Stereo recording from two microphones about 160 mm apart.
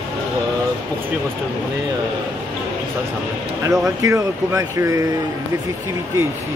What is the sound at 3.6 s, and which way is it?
Speech, 20° right (ahead or behind).